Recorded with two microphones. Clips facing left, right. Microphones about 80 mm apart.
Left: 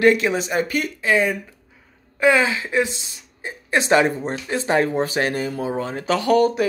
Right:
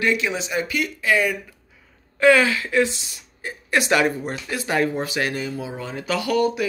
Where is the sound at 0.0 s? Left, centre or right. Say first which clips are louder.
Left 6 dB; left.